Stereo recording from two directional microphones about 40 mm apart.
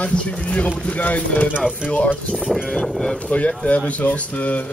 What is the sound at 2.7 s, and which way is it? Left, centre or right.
Speech, centre.